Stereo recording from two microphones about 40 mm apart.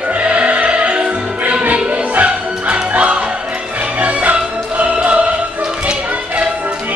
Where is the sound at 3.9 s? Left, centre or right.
Right.